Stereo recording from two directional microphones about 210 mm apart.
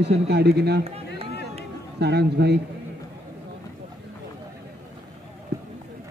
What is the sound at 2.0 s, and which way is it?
Speech, 50° right (ahead or behind).